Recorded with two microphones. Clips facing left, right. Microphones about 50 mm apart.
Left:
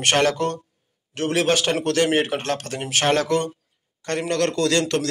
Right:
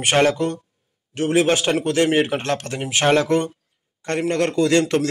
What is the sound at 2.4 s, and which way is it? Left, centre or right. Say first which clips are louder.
A man's voice: right 2 dB; right.